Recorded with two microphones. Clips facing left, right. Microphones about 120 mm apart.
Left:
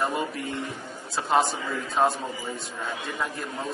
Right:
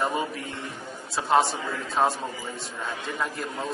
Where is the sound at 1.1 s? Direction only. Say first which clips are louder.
Right 1 dB; centre (ahead or behind).